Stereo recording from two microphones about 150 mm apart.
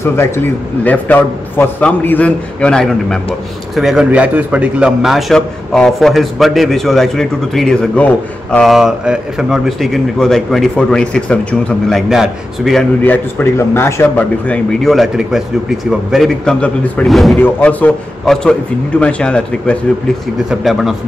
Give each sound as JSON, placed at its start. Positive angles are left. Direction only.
{"t": 0.0, "sound": "a man's voice", "side_deg": 15}
{"t": 13.0, "sound": "a man's voice", "side_deg": 15}